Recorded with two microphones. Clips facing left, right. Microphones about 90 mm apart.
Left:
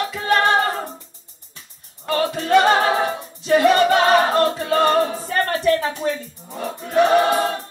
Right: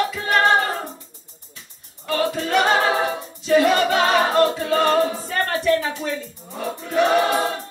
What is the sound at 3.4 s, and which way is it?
Choir, 40° left (ahead or behind).